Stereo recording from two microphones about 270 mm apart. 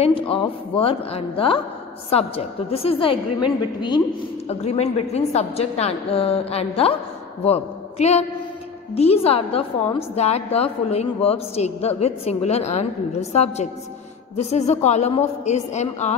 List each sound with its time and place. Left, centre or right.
0.0 s a woman's voice: left
4.5 s a woman's voice: left